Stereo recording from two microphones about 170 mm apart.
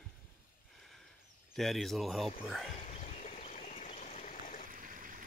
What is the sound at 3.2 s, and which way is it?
Stream, 45° left (ahead or behind).